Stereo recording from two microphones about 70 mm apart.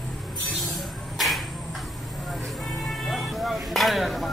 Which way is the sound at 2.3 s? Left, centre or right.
Centre.